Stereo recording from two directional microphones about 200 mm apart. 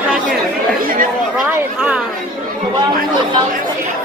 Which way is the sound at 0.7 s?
45° right (ahead or behind).